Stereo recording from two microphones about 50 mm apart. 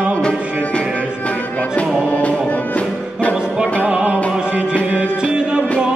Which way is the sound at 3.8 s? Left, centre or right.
Right.